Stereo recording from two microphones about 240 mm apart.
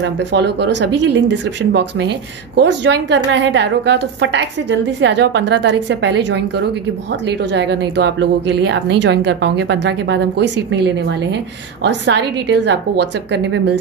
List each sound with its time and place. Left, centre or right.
0.0 s speech: right